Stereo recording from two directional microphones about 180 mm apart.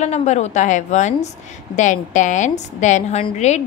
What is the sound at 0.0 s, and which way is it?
A woman's voice, 40° left (ahead or behind).